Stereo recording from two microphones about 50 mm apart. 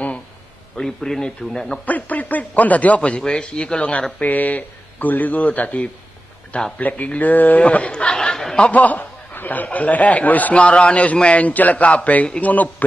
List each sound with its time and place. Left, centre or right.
0.7 s speech: centre
1.9 s a man's voice: left
3.2 s speech: centre
4.2 s a man's voice: left
7.6 s chatter: left
8.5 s a man's voice: left